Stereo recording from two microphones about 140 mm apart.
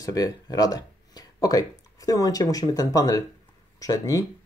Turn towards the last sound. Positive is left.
turn(degrees=25)  # may be behind; listen again after turning